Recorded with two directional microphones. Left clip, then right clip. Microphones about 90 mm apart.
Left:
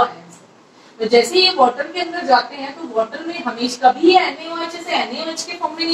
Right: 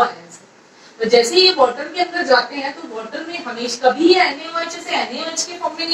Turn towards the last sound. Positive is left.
turn(degrees=-35)  # may be behind; listen again after turning